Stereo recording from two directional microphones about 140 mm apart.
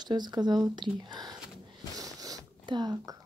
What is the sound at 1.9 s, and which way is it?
Zipper, 25° right (ahead or behind).